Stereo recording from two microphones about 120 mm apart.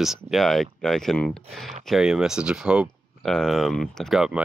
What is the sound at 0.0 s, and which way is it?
Speech, centre (ahead or behind).